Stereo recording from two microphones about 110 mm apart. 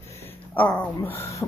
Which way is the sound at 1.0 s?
25° left (ahead or behind).